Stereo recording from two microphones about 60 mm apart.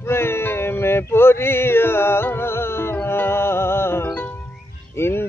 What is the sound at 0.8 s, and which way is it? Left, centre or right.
Mantra, left.